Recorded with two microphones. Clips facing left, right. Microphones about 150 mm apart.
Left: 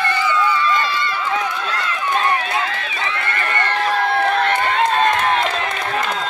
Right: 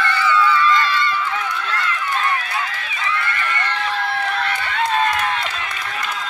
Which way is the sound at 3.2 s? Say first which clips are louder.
Left 3 dB; 45° left (ahead or behind).